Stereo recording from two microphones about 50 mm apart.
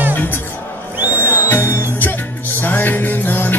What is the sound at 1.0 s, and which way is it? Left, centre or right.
Music, right.